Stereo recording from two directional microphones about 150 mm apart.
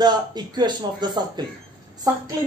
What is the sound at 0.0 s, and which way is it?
Speech, 30° right (ahead or behind).